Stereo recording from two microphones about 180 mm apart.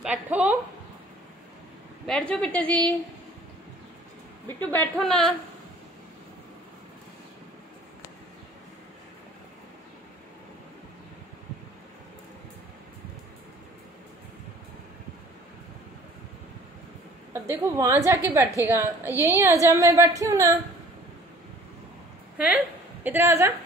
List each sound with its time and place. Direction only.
0.0 s a sound: 5° right (ahead or behind)
2.0 s a woman's voice: 5° left (ahead or behind)
4.6 s a woman's voice: 10° left (ahead or behind)
17.3 s a woman's voice: 15° right (ahead or behind)
23.0 s a woman's voice: 10° right (ahead or behind)